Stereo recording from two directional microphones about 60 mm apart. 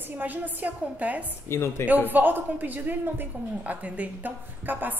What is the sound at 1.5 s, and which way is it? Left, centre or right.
Speech, left.